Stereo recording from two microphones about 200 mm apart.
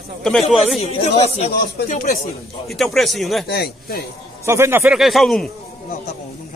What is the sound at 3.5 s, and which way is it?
Speech, 50° left (ahead or behind).